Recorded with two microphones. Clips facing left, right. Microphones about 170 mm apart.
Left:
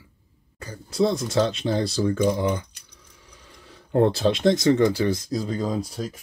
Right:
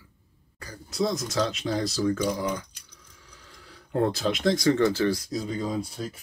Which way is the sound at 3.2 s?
20° left (ahead or behind).